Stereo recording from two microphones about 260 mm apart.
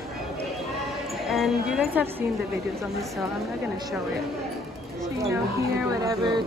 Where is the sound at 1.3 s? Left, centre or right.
Centre.